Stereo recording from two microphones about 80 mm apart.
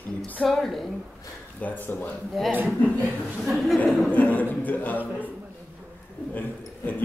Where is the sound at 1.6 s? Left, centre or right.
Left.